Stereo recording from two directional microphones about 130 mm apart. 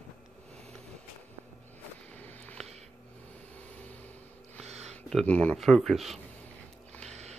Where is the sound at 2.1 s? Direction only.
15° left (ahead or behind).